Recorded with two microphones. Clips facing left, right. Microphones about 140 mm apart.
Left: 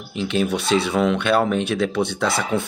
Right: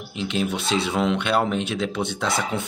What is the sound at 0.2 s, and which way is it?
Speech, 20° right (ahead or behind).